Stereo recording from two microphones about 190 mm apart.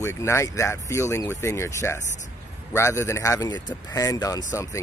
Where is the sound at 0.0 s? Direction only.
15° left (ahead or behind).